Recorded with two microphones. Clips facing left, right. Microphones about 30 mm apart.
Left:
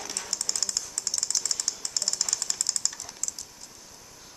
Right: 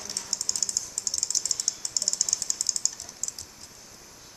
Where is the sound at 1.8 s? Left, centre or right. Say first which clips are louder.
Even; left.